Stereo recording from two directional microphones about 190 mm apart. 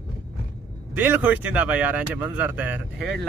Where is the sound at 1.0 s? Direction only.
10° right (ahead or behind).